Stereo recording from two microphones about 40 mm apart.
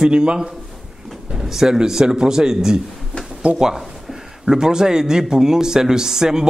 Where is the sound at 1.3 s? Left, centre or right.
Centre.